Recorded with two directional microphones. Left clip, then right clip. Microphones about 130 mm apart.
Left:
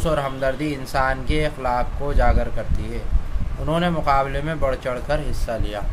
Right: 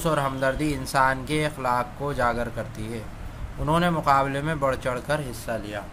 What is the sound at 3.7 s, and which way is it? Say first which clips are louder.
Speech: left 1 dB; 30° right (ahead or behind).